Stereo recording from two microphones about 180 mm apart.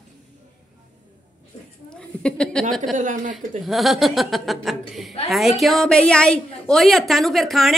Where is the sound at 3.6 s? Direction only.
Centre (ahead or behind).